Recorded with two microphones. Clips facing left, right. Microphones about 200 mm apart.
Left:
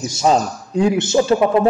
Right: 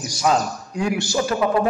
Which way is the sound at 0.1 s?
25° left (ahead or behind).